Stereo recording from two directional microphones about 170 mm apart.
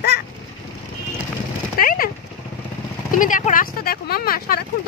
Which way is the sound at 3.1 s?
50° left (ahead or behind).